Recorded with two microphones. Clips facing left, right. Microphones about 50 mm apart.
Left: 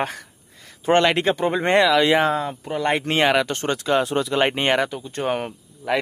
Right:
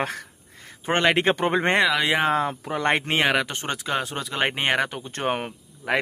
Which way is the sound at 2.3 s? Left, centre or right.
Right.